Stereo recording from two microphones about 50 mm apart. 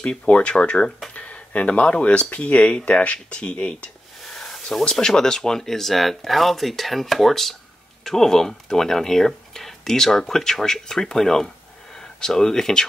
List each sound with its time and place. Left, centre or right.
0.0 s speech: centre
4.3 s a sound: centre
4.8 s speech: centre